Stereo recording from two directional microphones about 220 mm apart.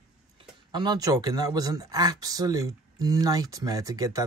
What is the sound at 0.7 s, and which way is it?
Speech, 20° right (ahead or behind).